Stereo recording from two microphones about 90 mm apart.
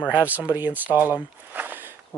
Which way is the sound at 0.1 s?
15° right (ahead or behind).